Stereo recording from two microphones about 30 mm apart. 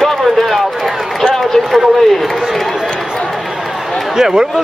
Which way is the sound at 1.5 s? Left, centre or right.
Centre.